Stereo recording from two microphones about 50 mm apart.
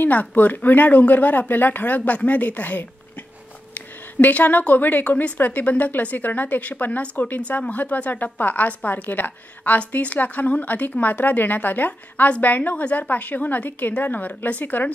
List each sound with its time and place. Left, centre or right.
0.0 s a woman's voice: left